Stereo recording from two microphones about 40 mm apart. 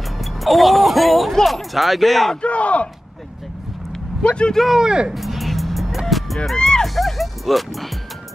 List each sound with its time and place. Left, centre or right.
0.2 s music: centre
1.3 s speech: centre
2.4 s speech: left
4.2 s speech: left
4.7 s speech: right
5.1 s music: centre
6.5 s music: centre
7.0 s speech: centre